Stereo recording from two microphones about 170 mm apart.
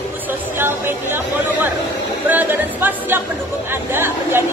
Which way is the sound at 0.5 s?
10° right (ahead or behind).